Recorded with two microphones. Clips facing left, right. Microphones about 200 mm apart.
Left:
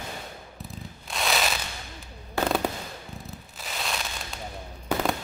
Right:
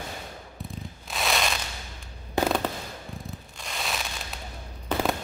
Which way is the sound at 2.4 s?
20° right (ahead or behind).